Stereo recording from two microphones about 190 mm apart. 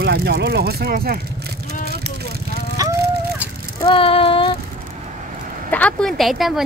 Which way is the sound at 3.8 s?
30° left (ahead or behind).